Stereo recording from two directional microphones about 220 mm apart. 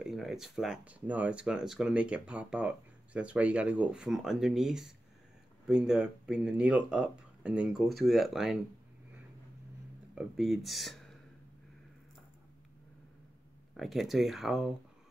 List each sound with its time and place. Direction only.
0.0 s speech: centre (ahead or behind)
10.1 s speech: centre (ahead or behind)
13.7 s speech: centre (ahead or behind)